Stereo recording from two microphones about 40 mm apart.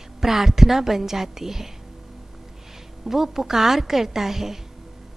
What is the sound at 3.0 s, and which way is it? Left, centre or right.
A woman's voice, centre.